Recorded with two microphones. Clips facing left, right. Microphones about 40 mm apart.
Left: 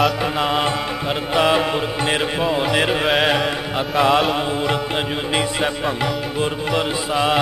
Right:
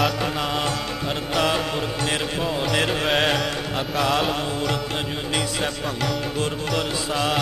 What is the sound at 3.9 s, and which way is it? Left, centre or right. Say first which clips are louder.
Music: left 7 dB; centre.